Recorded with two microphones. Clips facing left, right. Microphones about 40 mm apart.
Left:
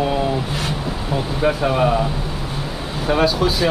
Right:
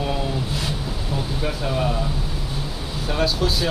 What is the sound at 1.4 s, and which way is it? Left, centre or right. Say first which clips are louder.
Speech: left 8 dB; left.